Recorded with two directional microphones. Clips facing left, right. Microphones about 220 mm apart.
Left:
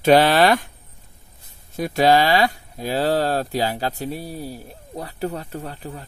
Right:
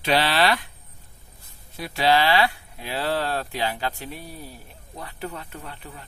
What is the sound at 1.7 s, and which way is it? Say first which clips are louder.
Speech: left 5 dB; 45° left (ahead or behind).